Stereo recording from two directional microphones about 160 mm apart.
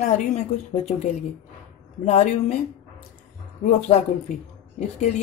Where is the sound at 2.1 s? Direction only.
45° left (ahead or behind).